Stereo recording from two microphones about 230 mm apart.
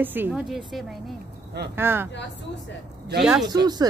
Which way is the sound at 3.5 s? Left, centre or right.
Centre.